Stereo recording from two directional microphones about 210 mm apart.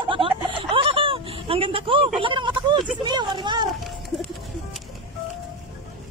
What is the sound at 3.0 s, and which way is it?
Speech, 20° right (ahead or behind).